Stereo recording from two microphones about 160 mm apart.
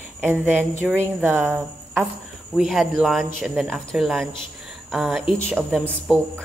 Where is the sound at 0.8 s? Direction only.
5° right (ahead or behind).